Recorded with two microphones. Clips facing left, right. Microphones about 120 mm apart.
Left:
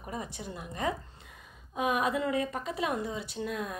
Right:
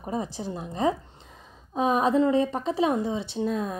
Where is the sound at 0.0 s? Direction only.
30° right (ahead or behind).